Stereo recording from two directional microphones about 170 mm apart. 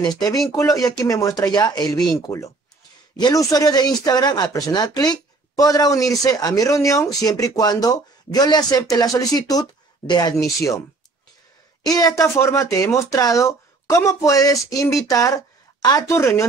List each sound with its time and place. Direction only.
0.5 s speech: 20° left (ahead or behind)
11.8 s speech: 20° left (ahead or behind)